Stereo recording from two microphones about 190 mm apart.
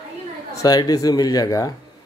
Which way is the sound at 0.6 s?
20° left (ahead or behind).